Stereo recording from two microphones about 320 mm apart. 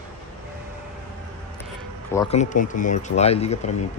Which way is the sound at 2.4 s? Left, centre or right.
Left.